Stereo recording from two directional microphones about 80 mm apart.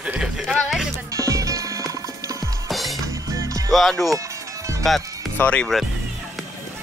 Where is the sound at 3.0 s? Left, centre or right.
Right.